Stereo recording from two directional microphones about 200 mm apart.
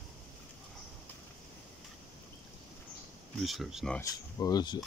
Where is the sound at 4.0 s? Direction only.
20° left (ahead or behind).